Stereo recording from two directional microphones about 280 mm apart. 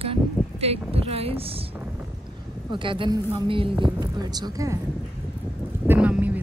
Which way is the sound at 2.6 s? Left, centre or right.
Centre.